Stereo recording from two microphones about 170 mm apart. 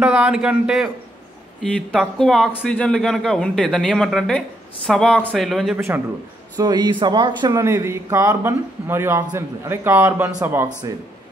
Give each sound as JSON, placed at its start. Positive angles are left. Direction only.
{"t": 0.0, "sound": "a man's voice", "side_deg": -5}
{"t": 6.5, "sound": "a man's voice", "side_deg": -25}